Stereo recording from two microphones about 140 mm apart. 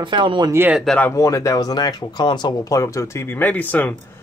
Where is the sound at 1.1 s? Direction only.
25° left (ahead or behind).